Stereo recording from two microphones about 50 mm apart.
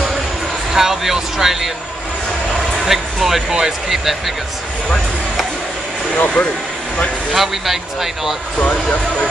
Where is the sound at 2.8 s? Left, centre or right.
Centre.